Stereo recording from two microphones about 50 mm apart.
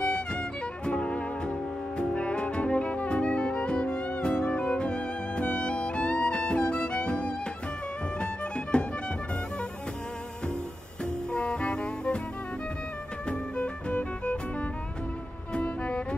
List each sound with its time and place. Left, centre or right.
0.0 s music: left
11.3 s music: left
13.3 s music: left